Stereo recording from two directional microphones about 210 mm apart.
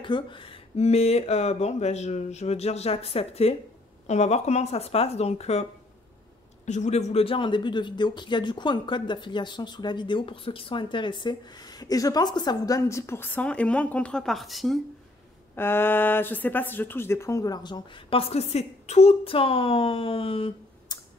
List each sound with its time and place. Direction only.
0.0 s speech: 25° left (ahead or behind); by 14.8 s centre (ahead or behind)
15.5 s speech: 10° left (ahead or behind); by 21.0 s 25° left (ahead or behind)